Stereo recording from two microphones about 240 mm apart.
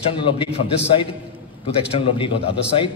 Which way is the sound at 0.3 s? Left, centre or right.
Left.